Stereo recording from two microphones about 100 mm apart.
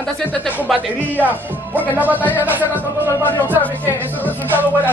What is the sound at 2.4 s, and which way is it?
Speech, 20° right (ahead or behind).